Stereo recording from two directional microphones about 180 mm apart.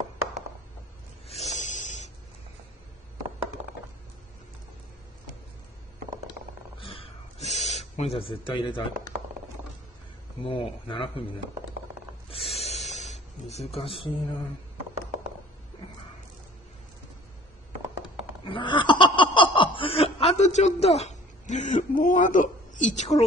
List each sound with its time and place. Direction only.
1.3 s snake: 40° left (ahead or behind)
6.8 s a sound: 30° left (ahead or behind)
10.4 s speech: 30° left (ahead or behind)
12.3 s snake: 35° left (ahead or behind)
18.4 s snicker: 25° left (ahead or behind)